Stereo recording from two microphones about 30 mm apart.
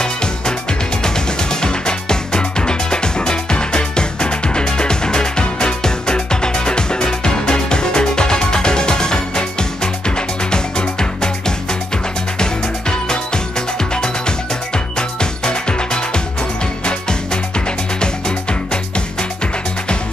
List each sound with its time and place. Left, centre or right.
0.0 s music: left
15.0 s music: left